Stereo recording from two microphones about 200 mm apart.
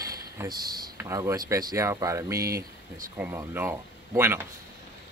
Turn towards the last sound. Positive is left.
turn(degrees=-10)  # may be behind; listen again after turning